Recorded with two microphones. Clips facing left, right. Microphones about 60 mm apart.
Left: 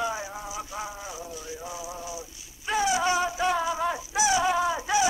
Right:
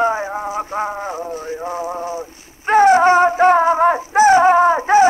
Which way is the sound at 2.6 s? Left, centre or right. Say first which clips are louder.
Right 14 dB; right.